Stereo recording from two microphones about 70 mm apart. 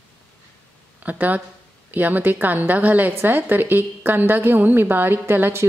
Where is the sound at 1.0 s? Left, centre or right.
Right.